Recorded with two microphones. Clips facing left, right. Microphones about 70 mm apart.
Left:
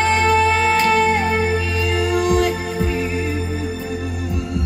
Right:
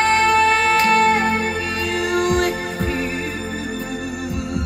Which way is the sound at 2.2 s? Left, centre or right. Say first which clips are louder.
Left 1 dB; right.